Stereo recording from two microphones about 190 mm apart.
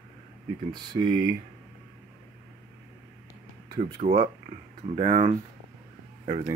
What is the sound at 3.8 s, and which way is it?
Speech, 35° right (ahead or behind).